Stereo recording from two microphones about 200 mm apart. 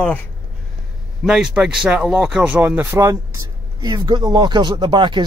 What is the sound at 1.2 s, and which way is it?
Speech, 5° right (ahead or behind).